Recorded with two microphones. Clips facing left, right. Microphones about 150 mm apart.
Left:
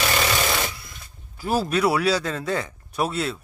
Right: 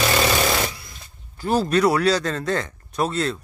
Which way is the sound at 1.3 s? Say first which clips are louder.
Right 3 dB; 5° left (ahead or behind).